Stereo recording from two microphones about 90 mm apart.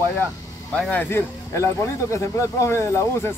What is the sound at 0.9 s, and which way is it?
Speech, 30° left (ahead or behind).